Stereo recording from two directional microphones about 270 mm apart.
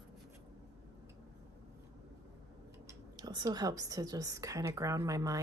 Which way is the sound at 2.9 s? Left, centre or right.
Centre.